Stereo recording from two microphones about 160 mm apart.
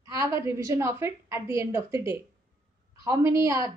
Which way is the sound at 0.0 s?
20° right (ahead or behind).